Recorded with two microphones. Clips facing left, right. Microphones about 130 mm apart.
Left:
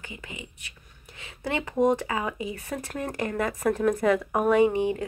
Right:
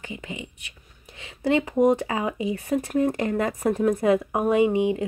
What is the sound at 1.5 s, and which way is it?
Speech, 25° right (ahead or behind).